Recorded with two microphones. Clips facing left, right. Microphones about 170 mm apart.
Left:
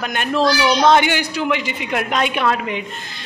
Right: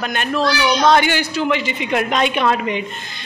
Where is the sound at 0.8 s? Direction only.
20° left (ahead or behind).